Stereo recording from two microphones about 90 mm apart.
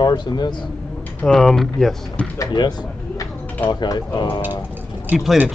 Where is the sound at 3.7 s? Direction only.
50° left (ahead or behind).